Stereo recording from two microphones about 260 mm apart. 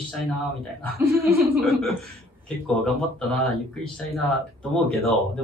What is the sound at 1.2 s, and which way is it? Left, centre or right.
Speech, right.